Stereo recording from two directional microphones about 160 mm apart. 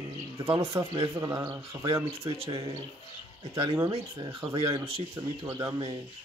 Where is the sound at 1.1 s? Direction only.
20° right (ahead or behind).